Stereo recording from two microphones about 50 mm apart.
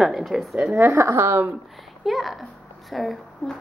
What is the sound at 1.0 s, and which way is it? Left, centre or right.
Speech, right.